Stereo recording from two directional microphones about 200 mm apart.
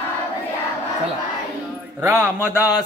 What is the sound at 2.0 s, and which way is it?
Speech, 10° right (ahead or behind).